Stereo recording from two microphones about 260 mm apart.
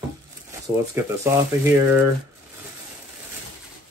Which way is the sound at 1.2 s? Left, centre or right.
Centre.